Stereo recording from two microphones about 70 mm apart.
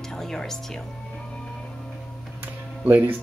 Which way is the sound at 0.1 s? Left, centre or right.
Centre.